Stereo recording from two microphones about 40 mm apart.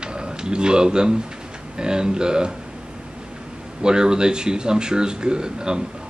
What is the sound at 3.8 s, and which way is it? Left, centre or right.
Speech, centre.